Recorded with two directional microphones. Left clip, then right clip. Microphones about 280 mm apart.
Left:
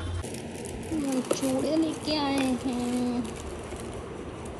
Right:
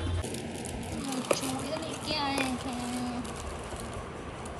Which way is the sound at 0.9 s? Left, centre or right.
Left.